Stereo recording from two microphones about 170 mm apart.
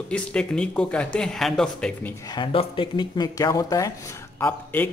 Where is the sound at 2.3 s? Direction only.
30° left (ahead or behind); by 4.9 s 10° left (ahead or behind).